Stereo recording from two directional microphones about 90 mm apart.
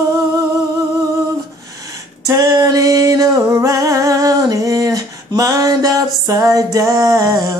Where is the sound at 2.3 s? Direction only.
40° right (ahead or behind).